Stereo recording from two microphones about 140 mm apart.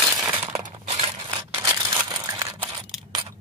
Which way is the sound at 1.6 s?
25° right (ahead or behind).